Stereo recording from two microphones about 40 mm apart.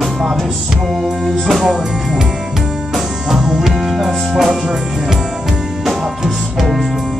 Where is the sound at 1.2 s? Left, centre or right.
Centre.